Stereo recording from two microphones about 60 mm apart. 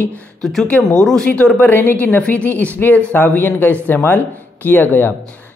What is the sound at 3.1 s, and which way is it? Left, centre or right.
Speech, left.